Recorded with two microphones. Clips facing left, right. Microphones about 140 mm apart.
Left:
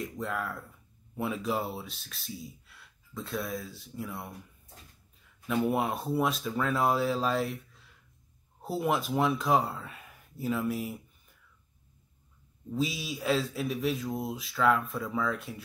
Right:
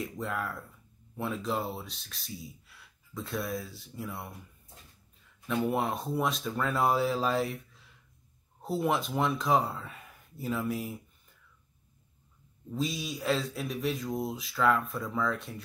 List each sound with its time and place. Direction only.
0.0 s speech: centre (ahead or behind)
5.7 s speech: 5° left (ahead or behind)
12.7 s speech: 5° left (ahead or behind)